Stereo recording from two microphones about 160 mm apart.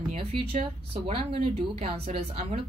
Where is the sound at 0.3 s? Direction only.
40° right (ahead or behind).